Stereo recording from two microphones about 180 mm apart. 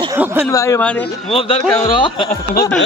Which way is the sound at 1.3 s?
35° left (ahead or behind).